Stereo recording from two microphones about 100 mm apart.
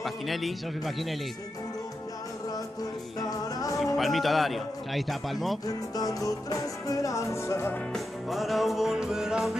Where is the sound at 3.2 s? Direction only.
35° left (ahead or behind).